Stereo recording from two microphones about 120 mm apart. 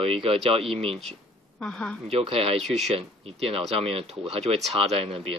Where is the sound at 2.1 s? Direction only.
55° right (ahead or behind).